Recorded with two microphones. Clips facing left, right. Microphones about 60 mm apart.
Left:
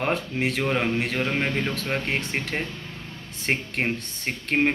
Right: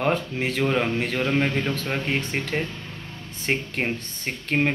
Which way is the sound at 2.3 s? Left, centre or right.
Left.